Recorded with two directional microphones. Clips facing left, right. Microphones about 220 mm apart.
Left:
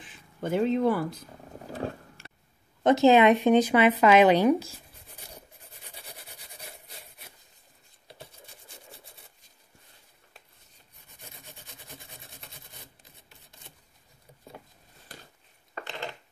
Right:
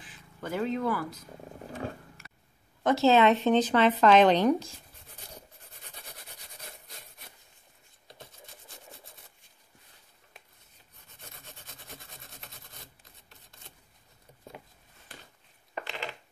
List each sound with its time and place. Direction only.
0.4 s speech: 20° left (ahead or behind)
1.7 s a sound: 30° left (ahead or behind)
2.8 s speech: 20° left (ahead or behind)